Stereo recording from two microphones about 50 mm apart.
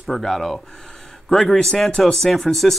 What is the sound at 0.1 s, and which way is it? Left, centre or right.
Speech, centre.